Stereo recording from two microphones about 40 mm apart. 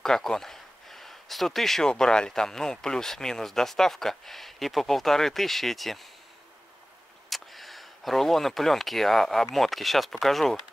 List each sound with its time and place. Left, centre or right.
0.0 s a sound: centre
1.9 s speech: centre
7.2 s speech: centre